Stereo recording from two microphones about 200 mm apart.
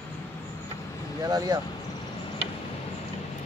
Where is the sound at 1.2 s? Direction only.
20° right (ahead or behind).